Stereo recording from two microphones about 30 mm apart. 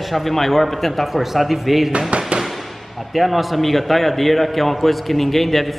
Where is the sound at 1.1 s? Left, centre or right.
Centre.